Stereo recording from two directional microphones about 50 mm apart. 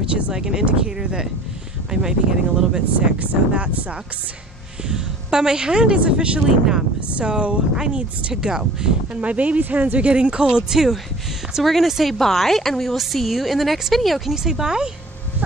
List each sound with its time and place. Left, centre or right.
0.1 s speech: centre
3.2 s speech: right
4.8 s a woman's voice: centre
9.2 s a woman's voice: right
11.6 s a woman's voice: centre
14.3 s speech: centre